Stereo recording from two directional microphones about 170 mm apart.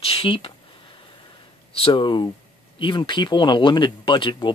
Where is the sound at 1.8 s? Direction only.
30° left (ahead or behind).